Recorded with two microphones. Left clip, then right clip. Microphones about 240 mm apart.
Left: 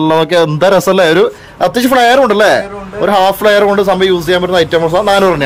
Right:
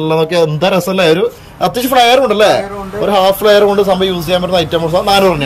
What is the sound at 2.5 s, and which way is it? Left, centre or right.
A man's voice, centre.